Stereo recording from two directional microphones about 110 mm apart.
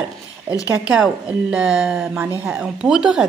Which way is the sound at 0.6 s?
15° right (ahead or behind).